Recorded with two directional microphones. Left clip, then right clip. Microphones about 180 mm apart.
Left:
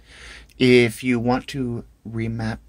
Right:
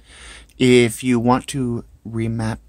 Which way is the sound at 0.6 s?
15° right (ahead or behind).